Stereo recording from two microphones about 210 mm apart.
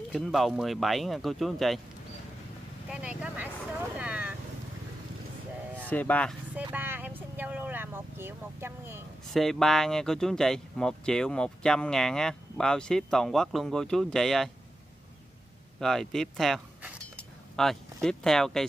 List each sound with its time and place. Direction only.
0.1 s speech: centre (ahead or behind)
2.9 s speech: 5° right (ahead or behind)
4.0 s vehicle: 5° right (ahead or behind)
5.9 s speech: 5° left (ahead or behind)
6.5 s speech: 10° right (ahead or behind)
9.3 s speech: centre (ahead or behind)
15.8 s speech: centre (ahead or behind)